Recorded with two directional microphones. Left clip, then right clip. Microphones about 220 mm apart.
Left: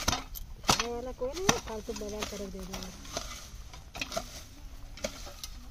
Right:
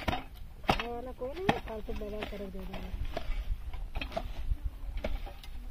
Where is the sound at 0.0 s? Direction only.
20° left (ahead or behind).